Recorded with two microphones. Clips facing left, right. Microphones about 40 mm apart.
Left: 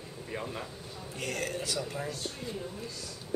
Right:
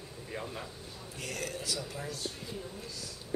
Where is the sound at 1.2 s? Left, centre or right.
Left.